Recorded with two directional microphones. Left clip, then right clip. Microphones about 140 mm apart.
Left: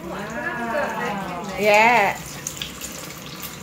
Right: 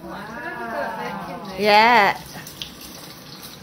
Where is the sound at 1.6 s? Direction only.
30° right (ahead or behind).